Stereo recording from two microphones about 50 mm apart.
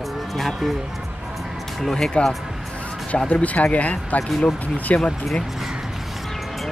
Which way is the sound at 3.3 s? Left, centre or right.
Left.